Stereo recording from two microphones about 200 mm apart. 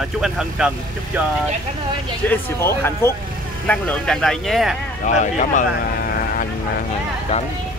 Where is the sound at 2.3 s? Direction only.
10° left (ahead or behind).